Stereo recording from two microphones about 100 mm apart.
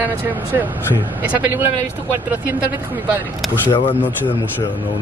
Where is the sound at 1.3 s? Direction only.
15° right (ahead or behind).